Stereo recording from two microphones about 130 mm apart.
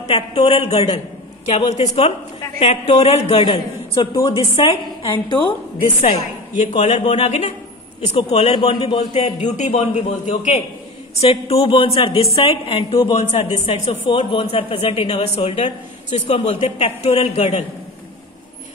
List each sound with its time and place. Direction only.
0.0 s speech: 50° left (ahead or behind)
1.5 s a woman's voice: 60° left (ahead or behind)
4.0 s a woman's voice: 30° left (ahead or behind)
4.3 s speech: 45° left (ahead or behind)
4.6 s a woman's voice: 35° left (ahead or behind)
5.9 s a woman's voice: 70° left (ahead or behind); by 9.3 s 45° left (ahead or behind)
9.4 s a woman's voice: 60° left (ahead or behind)
11.1 s speech: 50° left (ahead or behind)
14.0 s speech: 45° left (ahead or behind)